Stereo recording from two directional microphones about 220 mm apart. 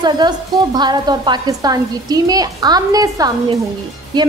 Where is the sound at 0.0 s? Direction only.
20° right (ahead or behind).